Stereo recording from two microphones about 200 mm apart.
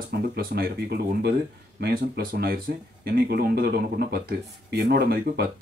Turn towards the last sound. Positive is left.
turn(degrees=-55)  # may be behind; listen again after turning